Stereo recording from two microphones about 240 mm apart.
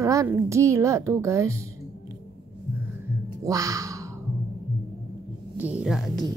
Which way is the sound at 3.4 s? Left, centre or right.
Centre.